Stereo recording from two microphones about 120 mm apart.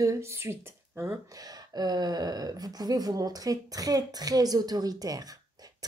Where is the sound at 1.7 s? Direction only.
35° right (ahead or behind).